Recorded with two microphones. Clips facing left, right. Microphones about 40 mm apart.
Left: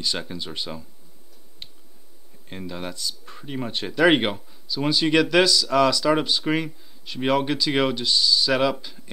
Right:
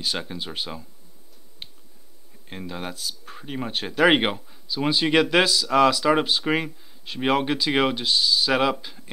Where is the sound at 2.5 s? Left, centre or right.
Centre.